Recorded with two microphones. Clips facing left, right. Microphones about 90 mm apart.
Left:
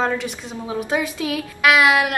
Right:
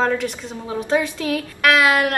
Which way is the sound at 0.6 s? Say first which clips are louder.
Right 2 dB; 10° left (ahead or behind).